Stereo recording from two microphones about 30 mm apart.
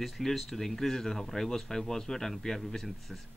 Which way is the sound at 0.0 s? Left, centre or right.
Centre.